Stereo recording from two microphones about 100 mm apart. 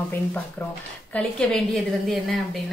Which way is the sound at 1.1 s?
5° left (ahead or behind).